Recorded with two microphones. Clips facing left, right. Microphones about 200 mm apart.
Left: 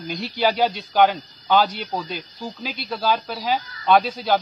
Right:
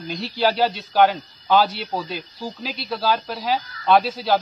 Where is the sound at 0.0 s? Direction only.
Centre (ahead or behind).